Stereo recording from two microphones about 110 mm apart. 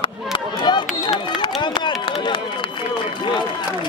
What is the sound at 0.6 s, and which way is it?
Speech, 40° left (ahead or behind).